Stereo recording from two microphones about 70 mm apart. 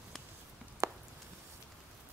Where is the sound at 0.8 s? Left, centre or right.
Right.